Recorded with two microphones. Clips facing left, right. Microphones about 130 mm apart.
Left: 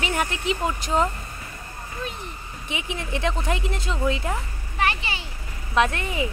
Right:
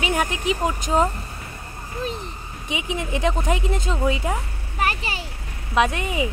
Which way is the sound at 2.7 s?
15° right (ahead or behind).